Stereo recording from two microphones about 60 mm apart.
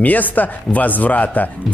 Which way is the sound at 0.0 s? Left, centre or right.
Left.